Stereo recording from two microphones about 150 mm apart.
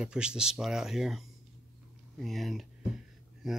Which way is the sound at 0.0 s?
5° right (ahead or behind).